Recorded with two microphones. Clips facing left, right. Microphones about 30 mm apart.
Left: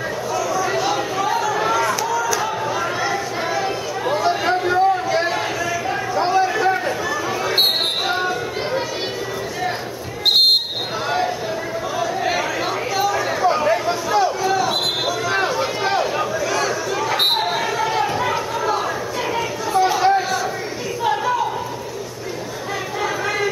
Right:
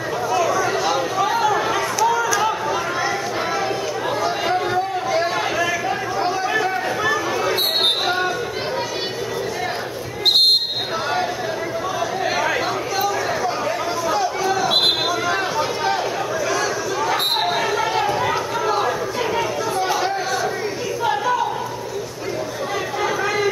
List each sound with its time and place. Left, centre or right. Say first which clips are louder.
0.3 s a sound: right 3 dB; centre
0.7 s a sound: even; centre
2.7 s chatter: even; centre
8.0 s music: even; centre
10.2 s basketball bounce: left 1 dB; centre
12.0 s chatter: left 1 dB; centre
13.4 s chatter: left 5 dB; centre
14.0 s chatter: even; centre
15.2 s a sound: left 1 dB; centre
17.4 s basketball bounce: right 1 dB; centre
19.9 s chatter: left 4 dB; centre
23.0 s a sound: right 1 dB; centre